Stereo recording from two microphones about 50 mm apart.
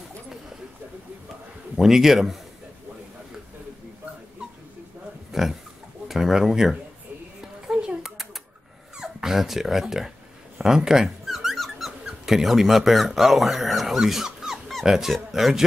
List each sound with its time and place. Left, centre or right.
1.8 s a man's voice: centre
5.3 s speech: centre
7.6 s a sound: centre
8.9 s speech: centre
10.6 s squeak: centre
12.1 s speech: centre